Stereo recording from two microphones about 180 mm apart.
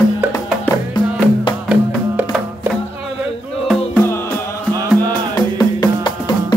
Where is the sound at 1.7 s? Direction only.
10° right (ahead or behind).